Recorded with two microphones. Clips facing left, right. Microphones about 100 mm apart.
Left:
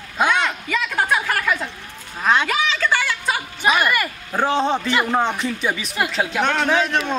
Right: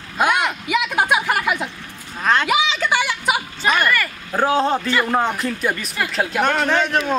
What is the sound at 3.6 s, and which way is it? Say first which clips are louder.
A man's voice: left 1 dB; 5° left (ahead or behind).